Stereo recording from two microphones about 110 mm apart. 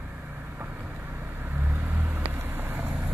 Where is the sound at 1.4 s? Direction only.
20° right (ahead or behind).